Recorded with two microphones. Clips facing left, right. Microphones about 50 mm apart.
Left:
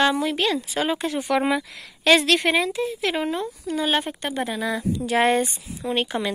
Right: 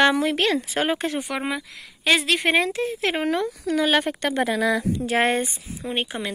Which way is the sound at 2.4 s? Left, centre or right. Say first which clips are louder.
Right 1 dB; right.